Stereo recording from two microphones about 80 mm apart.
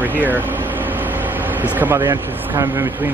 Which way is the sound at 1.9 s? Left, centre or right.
Right.